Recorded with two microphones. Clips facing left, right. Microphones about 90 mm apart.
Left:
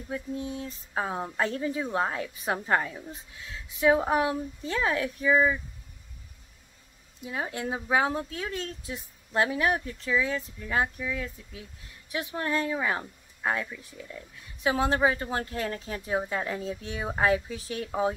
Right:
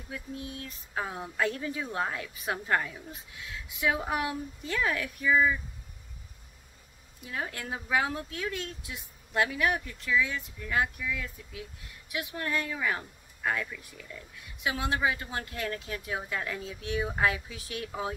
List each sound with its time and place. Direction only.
0.1 s speech: 30° left (ahead or behind)
7.2 s speech: 20° left (ahead or behind)
14.6 s speech: 35° left (ahead or behind)